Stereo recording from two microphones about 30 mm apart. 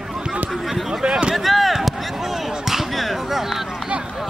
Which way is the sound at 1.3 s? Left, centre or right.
Centre.